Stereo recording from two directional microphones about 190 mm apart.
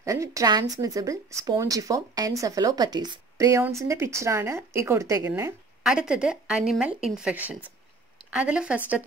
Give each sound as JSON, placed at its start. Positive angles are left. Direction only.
{"t": 0.0, "sound": "speech", "side_deg": -15}
{"t": 5.9, "sound": "a woman's voice", "side_deg": -5}